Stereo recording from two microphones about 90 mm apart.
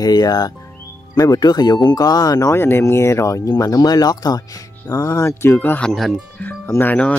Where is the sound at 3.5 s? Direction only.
45° left (ahead or behind).